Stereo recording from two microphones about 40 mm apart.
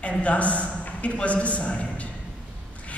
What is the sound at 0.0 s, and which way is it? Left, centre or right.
A man's voice, left.